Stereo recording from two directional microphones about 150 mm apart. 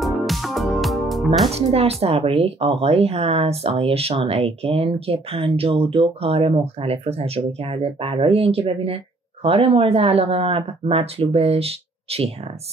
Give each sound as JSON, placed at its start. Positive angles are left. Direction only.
{"t": 0.0, "sound": "music", "side_deg": 0}
{"t": 1.5, "sound": "speech", "side_deg": -40}